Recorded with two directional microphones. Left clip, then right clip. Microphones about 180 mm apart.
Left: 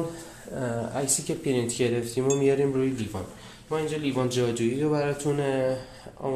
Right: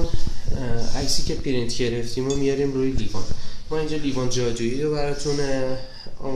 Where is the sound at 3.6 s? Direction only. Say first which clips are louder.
Right 2 dB; 30° left (ahead or behind).